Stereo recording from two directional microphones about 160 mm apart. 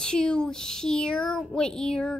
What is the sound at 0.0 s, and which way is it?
Speech, 5° left (ahead or behind).